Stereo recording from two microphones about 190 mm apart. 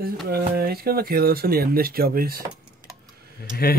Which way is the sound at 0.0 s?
55° right (ahead or behind).